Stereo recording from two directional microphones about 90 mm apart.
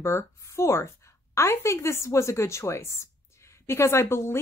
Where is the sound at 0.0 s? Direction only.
30° left (ahead or behind).